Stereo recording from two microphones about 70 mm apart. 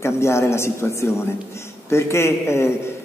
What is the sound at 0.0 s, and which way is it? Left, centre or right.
A man's voice, left.